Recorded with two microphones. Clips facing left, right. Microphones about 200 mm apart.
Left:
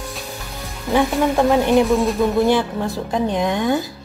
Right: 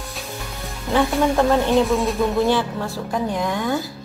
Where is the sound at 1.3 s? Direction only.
15° left (ahead or behind).